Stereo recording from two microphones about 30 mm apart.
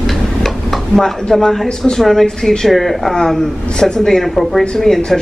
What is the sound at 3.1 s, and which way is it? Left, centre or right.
Speech, centre.